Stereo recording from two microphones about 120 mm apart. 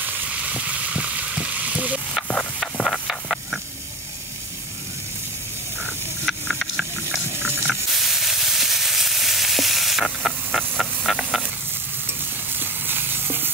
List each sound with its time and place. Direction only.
0.0 s frying: 10° right (ahead or behind)
2.2 s a sound: centre (ahead or behind)
6.2 s hiss: 5° left (ahead or behind)
7.9 s sizzle: centre (ahead or behind)
12.1 s stir: 15° right (ahead or behind)